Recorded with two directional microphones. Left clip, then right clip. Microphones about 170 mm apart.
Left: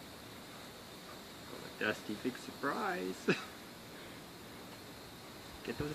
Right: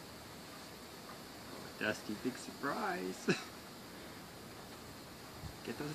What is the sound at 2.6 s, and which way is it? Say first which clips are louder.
Speech: left 2 dB; 35° right (ahead or behind).